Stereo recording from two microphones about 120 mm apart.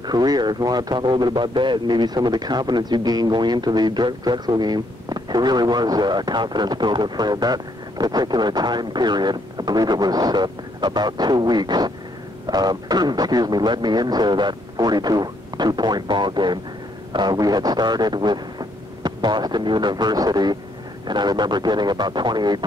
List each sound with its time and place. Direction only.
0.0 s a man's voice: 35° right (ahead or behind)